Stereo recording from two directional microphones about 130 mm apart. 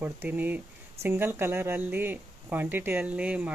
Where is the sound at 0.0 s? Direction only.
15° right (ahead or behind).